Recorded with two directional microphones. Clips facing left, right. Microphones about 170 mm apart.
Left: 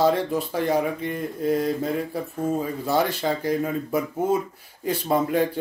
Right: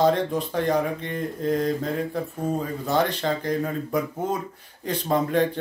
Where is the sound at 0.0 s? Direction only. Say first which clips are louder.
Even; 5° left (ahead or behind).